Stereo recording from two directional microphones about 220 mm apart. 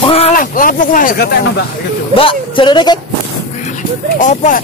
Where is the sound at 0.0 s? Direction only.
25° left (ahead or behind); by 1.3 s 40° left (ahead or behind).